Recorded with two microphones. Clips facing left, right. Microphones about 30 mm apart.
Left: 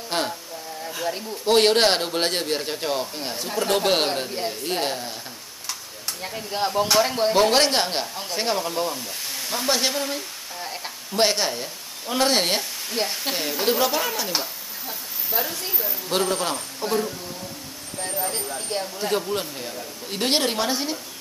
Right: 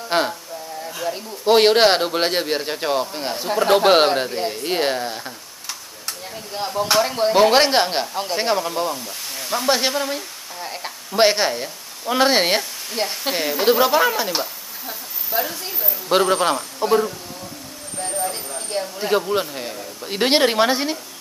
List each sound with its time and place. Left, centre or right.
0.1 s a man's voice: centre
0.8 s speech: centre
1.4 s a man's voice: centre
6.2 s speech: centre
7.0 s a man's voice: centre
14.3 s a sound: centre
16.1 s a woman's voice: right
18.2 s speech: centre
18.9 s a man's voice: centre